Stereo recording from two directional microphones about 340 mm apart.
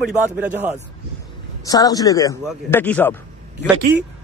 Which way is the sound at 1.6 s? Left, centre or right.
Centre.